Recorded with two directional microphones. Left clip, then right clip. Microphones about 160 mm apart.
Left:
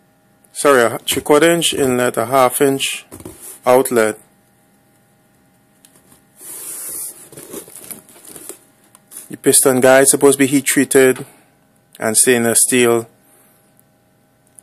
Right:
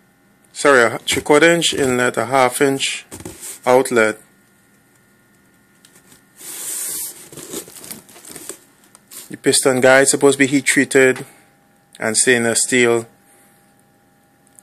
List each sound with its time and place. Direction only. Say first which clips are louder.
0.5 s speech: even; 15° left (ahead or behind)
9.3 s speech: left 2 dB; 25° left (ahead or behind)